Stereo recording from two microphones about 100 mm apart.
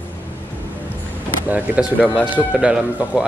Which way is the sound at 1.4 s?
15° right (ahead or behind).